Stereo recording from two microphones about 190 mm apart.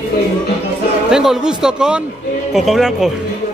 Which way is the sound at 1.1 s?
5° right (ahead or behind).